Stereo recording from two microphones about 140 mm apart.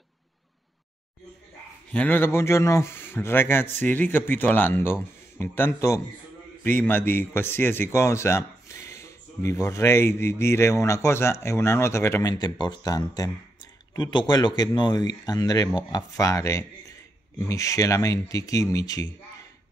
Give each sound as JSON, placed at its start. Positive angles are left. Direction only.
{"t": 1.9, "sound": "speech", "side_deg": 10}